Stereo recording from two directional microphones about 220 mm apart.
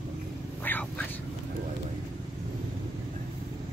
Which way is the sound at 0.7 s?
10° left (ahead or behind).